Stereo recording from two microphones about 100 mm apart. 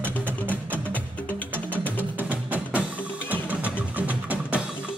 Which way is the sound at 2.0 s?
15° right (ahead or behind).